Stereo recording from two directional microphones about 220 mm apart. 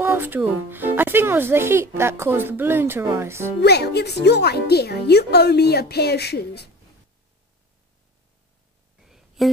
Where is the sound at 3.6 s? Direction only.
50° left (ahead or behind).